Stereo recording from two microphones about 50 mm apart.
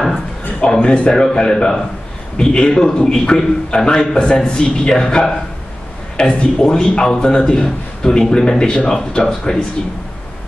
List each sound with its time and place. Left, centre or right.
0.7 s a man's voice: left